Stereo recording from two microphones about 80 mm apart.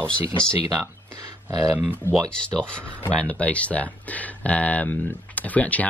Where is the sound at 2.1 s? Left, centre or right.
Centre.